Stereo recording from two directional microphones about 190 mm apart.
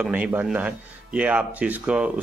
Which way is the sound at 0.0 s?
10° right (ahead or behind).